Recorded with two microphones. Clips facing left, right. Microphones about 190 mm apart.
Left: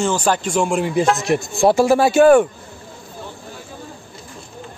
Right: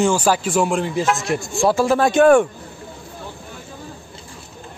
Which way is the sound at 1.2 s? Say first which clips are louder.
Left 3 dB; 20° left (ahead or behind).